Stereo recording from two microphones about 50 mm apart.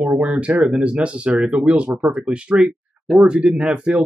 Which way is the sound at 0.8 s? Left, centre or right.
Right.